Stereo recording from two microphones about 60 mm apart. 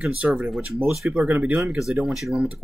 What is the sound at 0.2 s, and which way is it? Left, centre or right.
Speech, right.